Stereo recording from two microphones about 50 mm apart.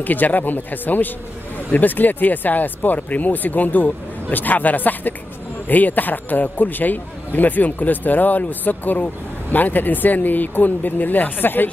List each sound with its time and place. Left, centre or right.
0.0 s speech: left